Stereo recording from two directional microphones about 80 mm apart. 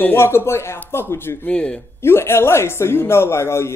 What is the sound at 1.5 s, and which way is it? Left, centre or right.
Speech, centre.